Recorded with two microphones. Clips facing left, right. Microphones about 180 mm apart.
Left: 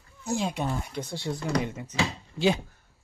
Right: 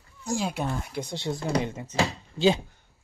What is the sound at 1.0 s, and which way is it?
Speech, 20° right (ahead or behind).